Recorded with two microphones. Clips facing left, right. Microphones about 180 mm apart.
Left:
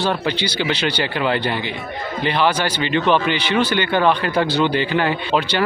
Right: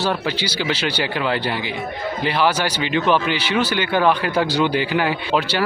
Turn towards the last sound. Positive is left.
turn(degrees=-5)  # may be behind; listen again after turning